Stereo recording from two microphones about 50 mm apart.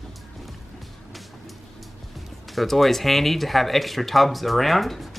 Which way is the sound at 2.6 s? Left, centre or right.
Centre.